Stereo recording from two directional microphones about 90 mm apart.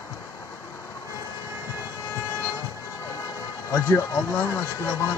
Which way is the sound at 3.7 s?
35° left (ahead or behind).